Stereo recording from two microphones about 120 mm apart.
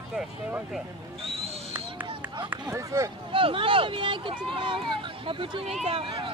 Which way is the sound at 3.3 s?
50° right (ahead or behind).